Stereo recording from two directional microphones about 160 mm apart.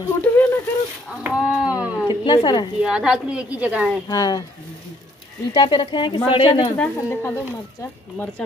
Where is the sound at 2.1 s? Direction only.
30° left (ahead or behind).